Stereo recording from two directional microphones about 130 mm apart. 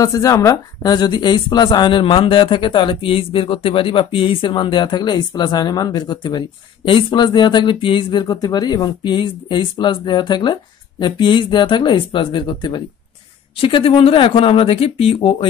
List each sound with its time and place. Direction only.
0.0 s a woman's voice: 25° left (ahead or behind); by 15.3 s 45° left (ahead or behind)